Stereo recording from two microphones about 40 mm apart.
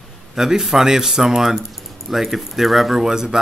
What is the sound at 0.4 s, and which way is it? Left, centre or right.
Speech, centre.